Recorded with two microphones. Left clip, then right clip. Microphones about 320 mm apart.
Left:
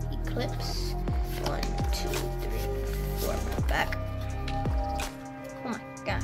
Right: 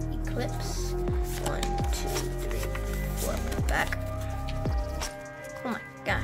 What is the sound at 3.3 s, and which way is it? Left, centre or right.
Speech, centre.